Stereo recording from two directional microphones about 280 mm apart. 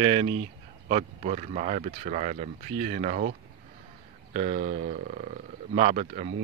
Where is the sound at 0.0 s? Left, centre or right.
Centre.